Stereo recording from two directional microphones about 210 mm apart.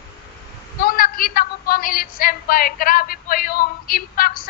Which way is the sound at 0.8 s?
45° left (ahead or behind).